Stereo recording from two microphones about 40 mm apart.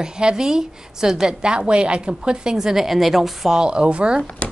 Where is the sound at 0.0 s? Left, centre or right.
Right.